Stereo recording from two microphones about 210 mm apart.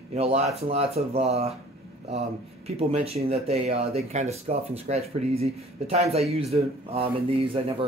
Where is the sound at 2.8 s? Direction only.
30° right (ahead or behind).